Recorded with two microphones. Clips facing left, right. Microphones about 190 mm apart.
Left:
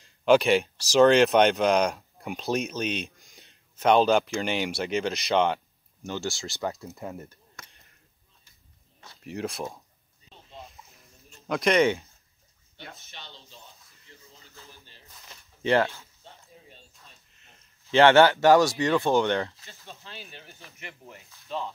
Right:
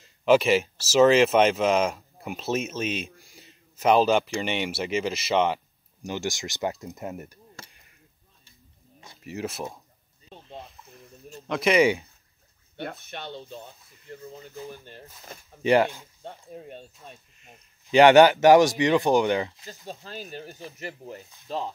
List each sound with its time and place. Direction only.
0.0 s speech: centre (ahead or behind)
6.0 s speech: 15° right (ahead or behind)
7.6 s a sound: 30° right (ahead or behind)
9.2 s speech: 5° right (ahead or behind)
11.4 s speech: centre (ahead or behind)
12.7 s speech: 60° right (ahead or behind)
14.4 s speech: 15° right (ahead or behind)
14.7 s speech: 55° right (ahead or behind)
15.6 s speech: 15° right (ahead or behind)
16.2 s speech: 55° right (ahead or behind)
17.4 s speech: 15° right (ahead or behind)
19.9 s speech: 40° right (ahead or behind)